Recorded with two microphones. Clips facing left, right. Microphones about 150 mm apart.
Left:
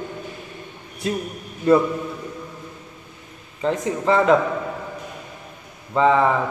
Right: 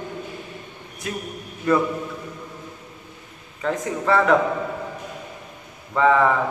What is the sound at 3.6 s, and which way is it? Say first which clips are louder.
Speech: left 2 dB; 20° left (ahead or behind).